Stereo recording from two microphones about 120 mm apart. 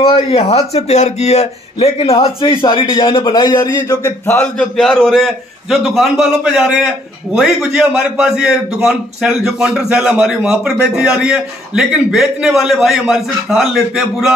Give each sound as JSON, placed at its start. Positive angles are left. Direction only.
{"t": 0.0, "sound": "a man's voice", "side_deg": 55}
{"t": 4.3, "sound": "a man's voice", "side_deg": 10}